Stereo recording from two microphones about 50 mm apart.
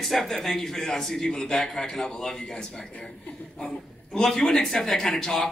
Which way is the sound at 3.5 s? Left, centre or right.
Centre.